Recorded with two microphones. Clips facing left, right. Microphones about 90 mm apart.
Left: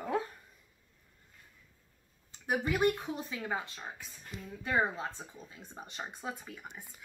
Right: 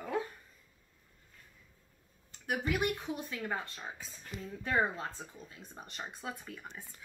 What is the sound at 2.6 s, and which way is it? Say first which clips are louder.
Speech: left 4 dB; 35° left (ahead or behind).